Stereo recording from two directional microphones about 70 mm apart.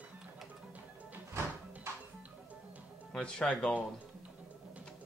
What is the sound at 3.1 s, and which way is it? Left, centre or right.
Speech, centre.